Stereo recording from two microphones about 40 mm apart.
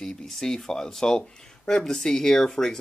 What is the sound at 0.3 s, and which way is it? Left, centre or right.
Speech, centre.